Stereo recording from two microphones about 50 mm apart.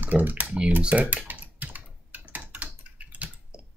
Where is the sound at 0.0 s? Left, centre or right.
Right.